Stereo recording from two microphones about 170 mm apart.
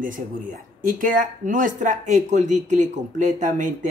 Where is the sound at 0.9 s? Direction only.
55° right (ahead or behind).